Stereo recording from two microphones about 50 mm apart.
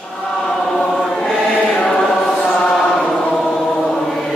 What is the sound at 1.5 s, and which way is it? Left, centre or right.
Choir, centre.